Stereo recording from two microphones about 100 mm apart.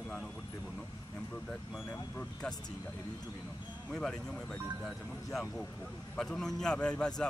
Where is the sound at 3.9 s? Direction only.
10° left (ahead or behind).